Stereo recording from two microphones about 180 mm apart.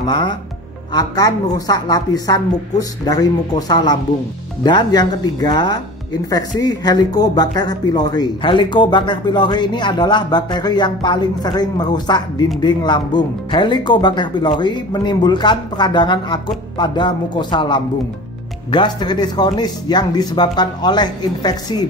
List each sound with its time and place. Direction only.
0.0 s speech: 25° left (ahead or behind)